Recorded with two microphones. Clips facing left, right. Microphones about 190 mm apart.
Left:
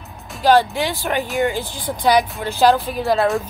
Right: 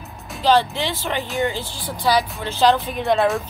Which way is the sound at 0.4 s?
10° left (ahead or behind).